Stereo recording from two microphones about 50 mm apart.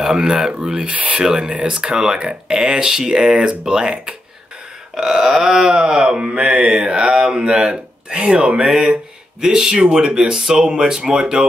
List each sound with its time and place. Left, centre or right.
0.0 s mantra: centre
0.8 s speech: right
1.2 s mantra: centre
8.6 s speech: centre
9.4 s mantra: centre